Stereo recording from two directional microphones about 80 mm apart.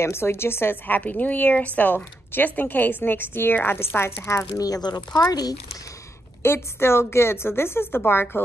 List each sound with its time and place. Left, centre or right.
0.0 s a woman's voice: left
4.6 s speech: left
6.4 s speech: left